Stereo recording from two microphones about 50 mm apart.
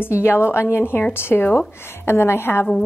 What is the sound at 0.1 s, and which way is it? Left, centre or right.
A woman's voice, left.